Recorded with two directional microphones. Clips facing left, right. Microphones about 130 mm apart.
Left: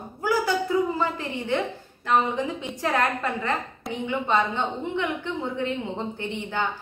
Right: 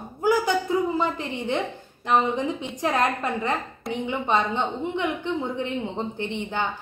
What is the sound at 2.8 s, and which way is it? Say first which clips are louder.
A woman's voice: right 1 dB; 20° right (ahead or behind).